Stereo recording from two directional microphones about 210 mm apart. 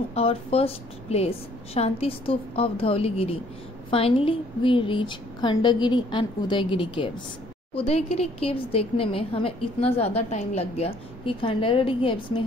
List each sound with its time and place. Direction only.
0.1 s speech: 30° left (ahead or behind)